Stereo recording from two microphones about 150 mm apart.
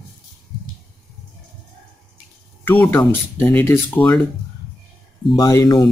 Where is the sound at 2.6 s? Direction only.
10° left (ahead or behind).